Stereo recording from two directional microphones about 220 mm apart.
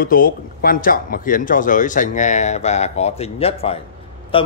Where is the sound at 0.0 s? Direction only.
40° left (ahead or behind).